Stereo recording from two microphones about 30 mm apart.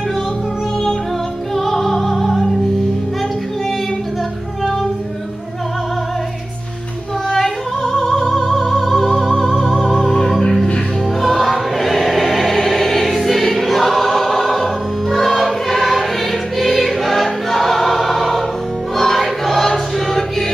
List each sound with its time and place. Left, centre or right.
1.5 s music: centre
7.2 s opera: centre
9.4 s music: centre
11.3 s choir: centre